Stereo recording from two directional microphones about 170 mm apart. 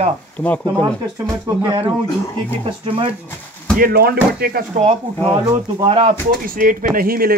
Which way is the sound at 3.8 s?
65° right (ahead or behind).